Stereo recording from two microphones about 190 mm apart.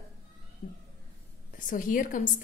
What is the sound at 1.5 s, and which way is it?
Speech, 45° left (ahead or behind).